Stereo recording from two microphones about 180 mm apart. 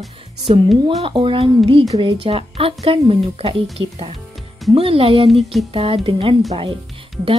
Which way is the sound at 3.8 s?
90° right.